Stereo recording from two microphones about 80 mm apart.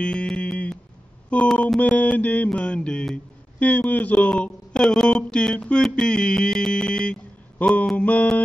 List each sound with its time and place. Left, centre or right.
0.0 s a sound: centre
1.3 s speech: centre
1.8 s mantra: centre